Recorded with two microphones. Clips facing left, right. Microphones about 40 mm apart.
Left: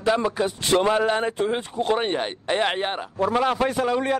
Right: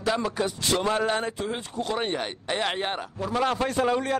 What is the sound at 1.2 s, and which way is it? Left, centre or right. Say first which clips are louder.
Speech: left 6 dB; left.